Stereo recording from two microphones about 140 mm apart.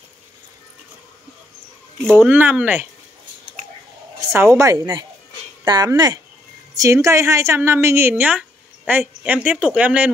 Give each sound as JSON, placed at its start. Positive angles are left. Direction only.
{"t": 2.0, "sound": "speech", "side_deg": -5}
{"t": 4.3, "sound": "a woman's voice", "side_deg": -20}